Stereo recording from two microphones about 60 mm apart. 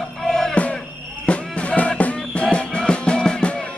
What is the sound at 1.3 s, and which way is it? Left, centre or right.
Music, left.